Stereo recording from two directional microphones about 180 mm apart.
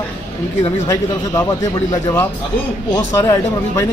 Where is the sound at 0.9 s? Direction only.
20° left (ahead or behind).